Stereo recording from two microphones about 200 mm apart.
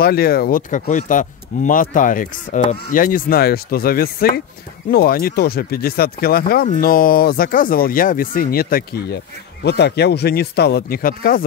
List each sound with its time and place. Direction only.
0.0 s speech: 50° left (ahead or behind)